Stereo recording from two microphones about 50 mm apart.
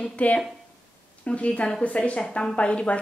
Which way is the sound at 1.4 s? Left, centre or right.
Left.